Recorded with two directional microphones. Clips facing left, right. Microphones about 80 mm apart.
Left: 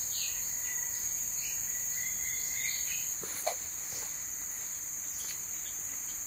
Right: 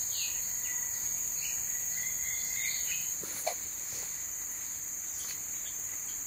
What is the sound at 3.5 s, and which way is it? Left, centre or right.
Cricket, left.